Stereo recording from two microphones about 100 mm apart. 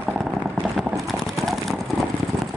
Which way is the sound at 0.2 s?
Centre (ahead or behind).